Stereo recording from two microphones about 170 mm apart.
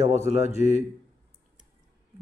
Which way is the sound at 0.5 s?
40° left (ahead or behind).